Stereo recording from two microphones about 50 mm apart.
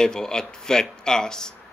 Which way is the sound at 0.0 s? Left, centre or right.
Centre.